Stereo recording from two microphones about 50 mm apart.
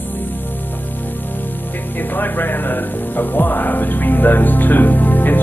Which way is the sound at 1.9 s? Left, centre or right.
Left.